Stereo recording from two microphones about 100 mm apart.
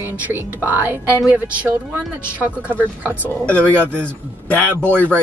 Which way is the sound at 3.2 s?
15° left (ahead or behind).